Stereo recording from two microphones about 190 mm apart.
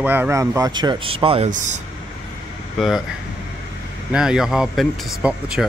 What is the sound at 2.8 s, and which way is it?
Speech, centre (ahead or behind).